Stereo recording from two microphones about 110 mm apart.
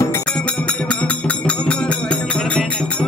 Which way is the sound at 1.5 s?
10° left (ahead or behind).